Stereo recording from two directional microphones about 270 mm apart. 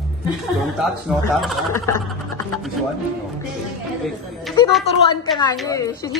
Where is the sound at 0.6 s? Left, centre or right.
Centre.